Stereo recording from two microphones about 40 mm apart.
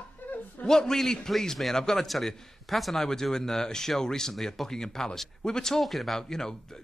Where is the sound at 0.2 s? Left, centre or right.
Left.